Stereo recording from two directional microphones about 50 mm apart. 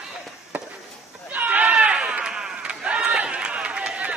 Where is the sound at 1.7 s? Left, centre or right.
Centre.